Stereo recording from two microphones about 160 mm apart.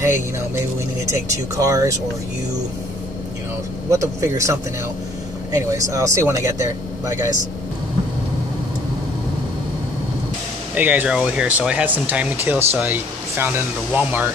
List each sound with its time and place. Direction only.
1.6 s speech: 20° right (ahead or behind)
3.9 s speech: 20° right (ahead or behind)
10.7 s speech: 10° right (ahead or behind)